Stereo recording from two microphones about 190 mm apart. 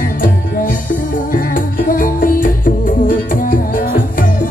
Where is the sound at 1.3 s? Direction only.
45° left (ahead or behind).